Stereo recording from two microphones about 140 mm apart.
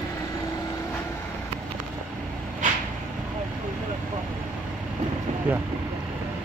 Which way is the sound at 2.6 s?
65° right (ahead or behind).